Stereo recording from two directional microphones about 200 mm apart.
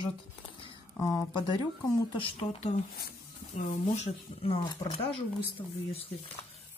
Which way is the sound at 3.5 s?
40° left (ahead or behind).